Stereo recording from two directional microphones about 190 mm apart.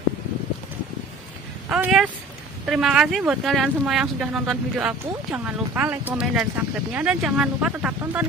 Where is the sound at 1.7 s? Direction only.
5° right (ahead or behind).